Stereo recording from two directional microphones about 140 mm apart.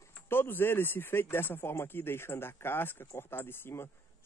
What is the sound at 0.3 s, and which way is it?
Speech, 15° left (ahead or behind).